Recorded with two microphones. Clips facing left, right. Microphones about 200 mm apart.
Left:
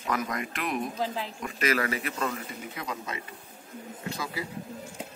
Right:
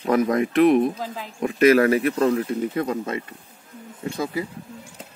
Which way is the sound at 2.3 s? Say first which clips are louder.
Right 15 dB; 60° right (ahead or behind).